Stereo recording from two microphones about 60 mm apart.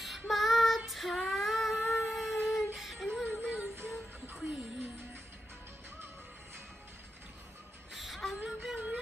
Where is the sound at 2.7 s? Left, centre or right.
Centre.